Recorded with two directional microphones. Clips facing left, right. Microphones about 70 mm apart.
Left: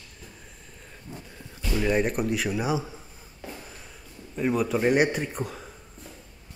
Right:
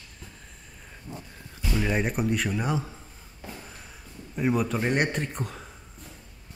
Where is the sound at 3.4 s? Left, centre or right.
Centre.